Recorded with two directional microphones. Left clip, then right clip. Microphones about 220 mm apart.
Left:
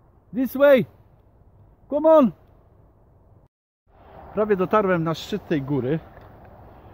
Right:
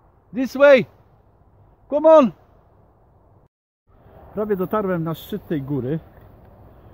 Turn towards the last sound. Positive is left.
turn(degrees=-15)  # may be behind; listen again after turning